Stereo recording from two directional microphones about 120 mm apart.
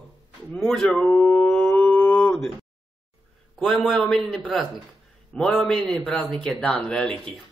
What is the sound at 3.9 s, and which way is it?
A man's voice, 5° left (ahead or behind).